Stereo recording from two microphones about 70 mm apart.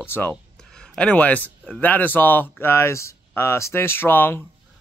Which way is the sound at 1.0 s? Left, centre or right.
Left.